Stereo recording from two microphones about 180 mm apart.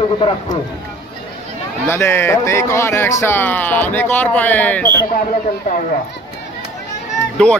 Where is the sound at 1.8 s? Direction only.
10° left (ahead or behind).